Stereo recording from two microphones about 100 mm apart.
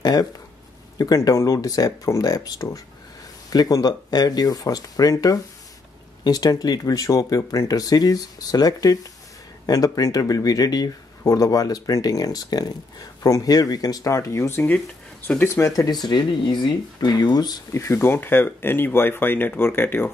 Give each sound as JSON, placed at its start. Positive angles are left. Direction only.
{"t": 0.0, "sound": "speech", "side_deg": 40}
{"t": 17.7, "sound": "speech", "side_deg": 25}